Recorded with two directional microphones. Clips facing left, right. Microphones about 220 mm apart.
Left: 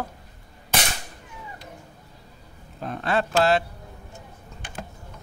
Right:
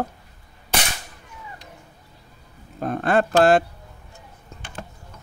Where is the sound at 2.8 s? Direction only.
50° right (ahead or behind).